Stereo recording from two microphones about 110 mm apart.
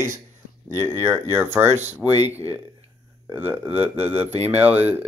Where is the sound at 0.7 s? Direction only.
25° right (ahead or behind).